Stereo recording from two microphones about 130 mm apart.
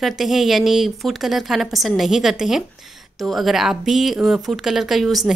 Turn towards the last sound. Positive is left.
turn(degrees=0)  # may be behind; listen again after turning